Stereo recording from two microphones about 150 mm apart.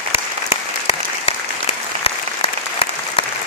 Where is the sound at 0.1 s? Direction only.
40° left (ahead or behind).